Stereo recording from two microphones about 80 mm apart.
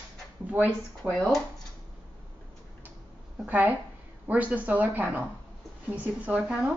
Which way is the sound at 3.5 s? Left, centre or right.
Right.